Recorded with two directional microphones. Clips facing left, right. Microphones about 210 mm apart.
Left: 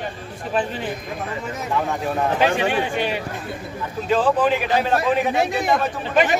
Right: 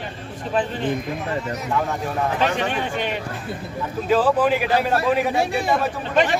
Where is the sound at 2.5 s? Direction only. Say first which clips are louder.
Left 3 dB; 10° left (ahead or behind).